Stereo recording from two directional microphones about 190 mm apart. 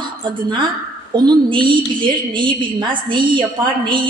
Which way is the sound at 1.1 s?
20° right (ahead or behind).